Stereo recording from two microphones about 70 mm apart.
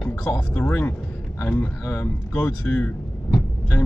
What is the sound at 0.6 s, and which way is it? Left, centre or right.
Speech, left.